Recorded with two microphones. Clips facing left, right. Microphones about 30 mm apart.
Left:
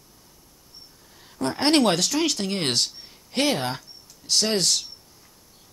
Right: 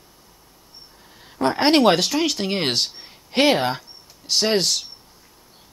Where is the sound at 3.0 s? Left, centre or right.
Right.